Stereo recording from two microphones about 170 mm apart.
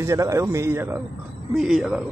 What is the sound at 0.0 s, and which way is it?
A man's voice, 15° right (ahead or behind).